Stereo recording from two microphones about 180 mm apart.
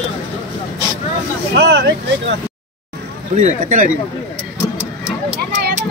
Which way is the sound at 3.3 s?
45° right (ahead or behind).